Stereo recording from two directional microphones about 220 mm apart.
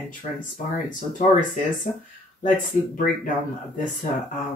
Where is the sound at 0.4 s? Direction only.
35° left (ahead or behind).